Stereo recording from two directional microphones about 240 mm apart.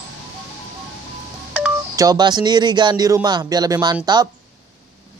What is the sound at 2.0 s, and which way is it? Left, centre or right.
Speech, centre.